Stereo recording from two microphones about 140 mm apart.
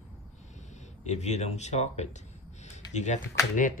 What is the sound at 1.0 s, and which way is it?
Speech, 55° left (ahead or behind).